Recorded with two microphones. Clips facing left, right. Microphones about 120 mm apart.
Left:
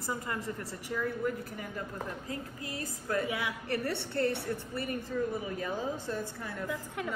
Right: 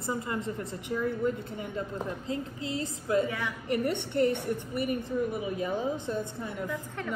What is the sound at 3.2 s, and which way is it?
Speech, 15° left (ahead or behind).